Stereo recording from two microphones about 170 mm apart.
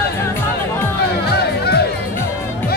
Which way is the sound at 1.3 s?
70° left (ahead or behind).